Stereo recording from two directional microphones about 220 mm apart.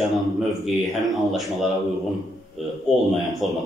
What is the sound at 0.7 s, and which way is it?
Speech, centre (ahead or behind).